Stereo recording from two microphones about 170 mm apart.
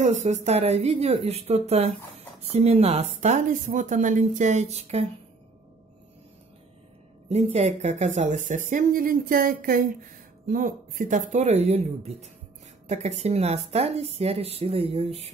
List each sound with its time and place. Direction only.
0.0 s speech: 45° right (ahead or behind)
7.2 s speech: 40° right (ahead or behind)